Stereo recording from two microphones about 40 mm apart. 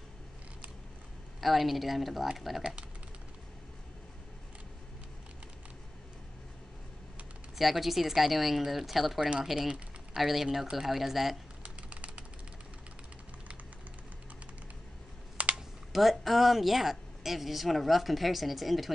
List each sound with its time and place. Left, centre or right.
1.4 s speech: centre
7.5 s speech: centre
11.6 s typewriter: right
15.9 s speech: centre